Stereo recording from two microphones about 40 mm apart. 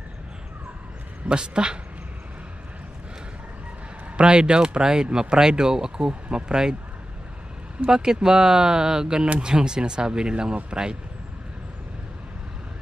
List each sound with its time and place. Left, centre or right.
1.3 s speech: right
4.2 s speech: right
7.9 s speech: centre